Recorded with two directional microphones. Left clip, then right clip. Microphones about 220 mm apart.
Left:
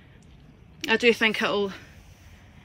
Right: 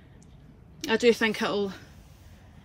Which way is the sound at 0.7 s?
5° right (ahead or behind).